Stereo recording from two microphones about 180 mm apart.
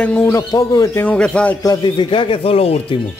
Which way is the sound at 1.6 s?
25° left (ahead or behind).